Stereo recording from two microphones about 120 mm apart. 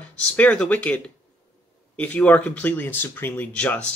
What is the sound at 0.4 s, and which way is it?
Speech, 10° left (ahead or behind).